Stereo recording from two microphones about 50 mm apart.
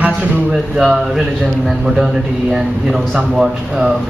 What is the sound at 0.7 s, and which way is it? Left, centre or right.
Speech, centre.